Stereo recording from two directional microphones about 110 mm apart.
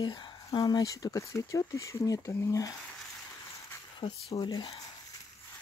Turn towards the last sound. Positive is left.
turn(degrees=40)  # may be behind; listen again after turning